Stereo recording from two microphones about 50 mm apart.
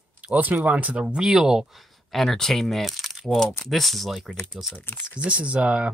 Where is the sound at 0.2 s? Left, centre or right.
Right.